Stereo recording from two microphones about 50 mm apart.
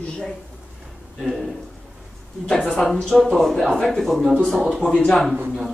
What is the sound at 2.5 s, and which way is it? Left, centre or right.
Speech, centre.